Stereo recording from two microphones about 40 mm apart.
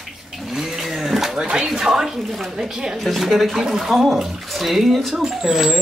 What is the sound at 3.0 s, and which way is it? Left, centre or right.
Speech, centre.